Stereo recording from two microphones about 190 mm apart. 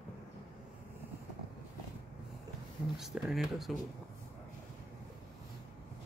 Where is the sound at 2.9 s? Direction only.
5° right (ahead or behind).